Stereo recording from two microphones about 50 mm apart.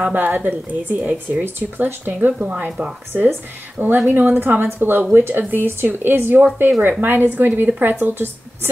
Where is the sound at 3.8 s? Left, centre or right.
Right.